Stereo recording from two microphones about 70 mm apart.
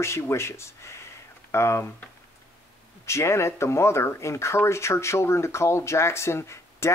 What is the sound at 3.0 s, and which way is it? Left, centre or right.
Speech, left.